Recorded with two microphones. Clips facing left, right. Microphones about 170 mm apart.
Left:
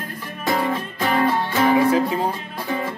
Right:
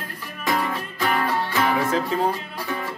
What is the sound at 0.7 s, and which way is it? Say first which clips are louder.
Music: left 3 dB; 25° left (ahead or behind).